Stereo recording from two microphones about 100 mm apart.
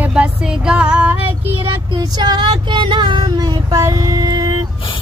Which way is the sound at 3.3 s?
40° right (ahead or behind).